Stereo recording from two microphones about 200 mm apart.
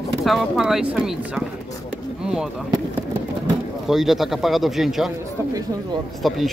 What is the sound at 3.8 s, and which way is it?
A man's voice, centre (ahead or behind).